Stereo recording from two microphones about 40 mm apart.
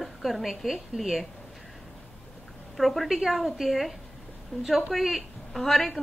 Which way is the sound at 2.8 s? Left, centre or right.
Centre.